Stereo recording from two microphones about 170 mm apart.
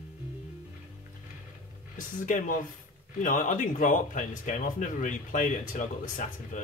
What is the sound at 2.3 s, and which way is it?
Speech, 50° left (ahead or behind).